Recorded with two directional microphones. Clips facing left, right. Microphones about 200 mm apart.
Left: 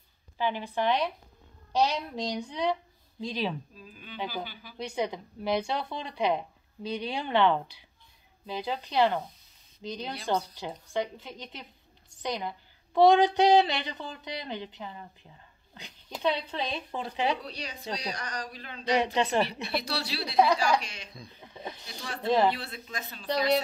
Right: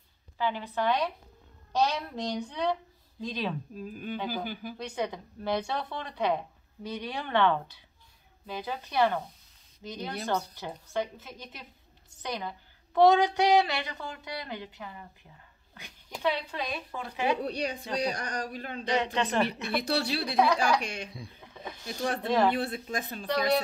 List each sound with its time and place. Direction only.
0.4 s a woman's voice: 15° left (ahead or behind)
3.7 s a woman's voice: 50° right (ahead or behind)
4.9 s a woman's voice: 15° left (ahead or behind)
17.4 s a woman's voice: 55° right (ahead or behind)
18.9 s a woman's voice: 10° left (ahead or behind)
19.4 s a woman's voice: 50° right (ahead or behind)
21.4 s snake: 15° left (ahead or behind)
21.8 s a woman's voice: 50° right (ahead or behind)